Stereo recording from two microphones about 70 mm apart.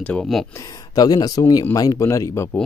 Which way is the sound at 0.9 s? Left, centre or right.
Left.